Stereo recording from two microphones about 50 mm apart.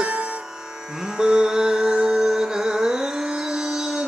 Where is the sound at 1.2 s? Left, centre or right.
Centre.